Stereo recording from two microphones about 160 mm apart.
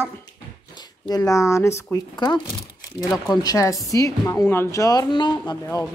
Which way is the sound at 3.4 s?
20° left (ahead or behind).